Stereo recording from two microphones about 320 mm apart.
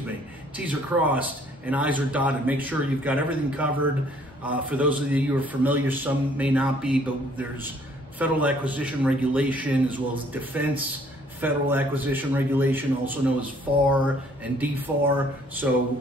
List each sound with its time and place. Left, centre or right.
0.6 s a man's voice: centre